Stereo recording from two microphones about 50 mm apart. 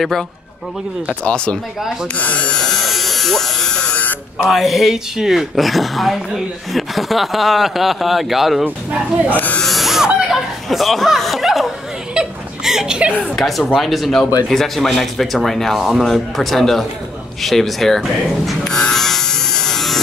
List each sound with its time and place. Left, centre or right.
1.2 s speech: centre
2.1 s speech: left
2.5 s electric shaver: centre
2.8 s electric shaver: centre
3.9 s a sound: left
4.5 s speech: centre
8.9 s speech: right
9.7 s a sound: centre
10.3 s chuckle: centre
12.1 s a sound: centre
13.4 s speech: centre
18.6 s electric shaver: centre